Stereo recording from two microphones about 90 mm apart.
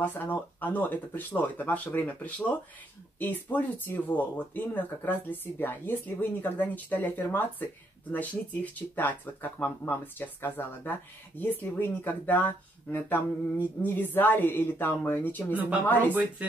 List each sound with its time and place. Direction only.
0.0 s speech: 20° left (ahead or behind)
15.5 s speech: 20° right (ahead or behind)